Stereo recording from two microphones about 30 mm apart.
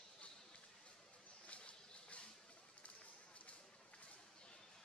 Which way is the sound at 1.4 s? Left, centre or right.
Left.